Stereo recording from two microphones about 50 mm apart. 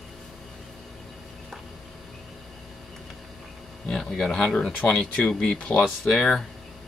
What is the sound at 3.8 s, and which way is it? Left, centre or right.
Speech, centre.